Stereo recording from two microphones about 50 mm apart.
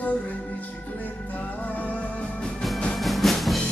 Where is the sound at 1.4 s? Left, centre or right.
Left.